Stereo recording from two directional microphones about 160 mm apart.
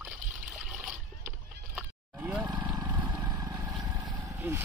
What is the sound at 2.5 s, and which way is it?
Vehicle, 30° right (ahead or behind).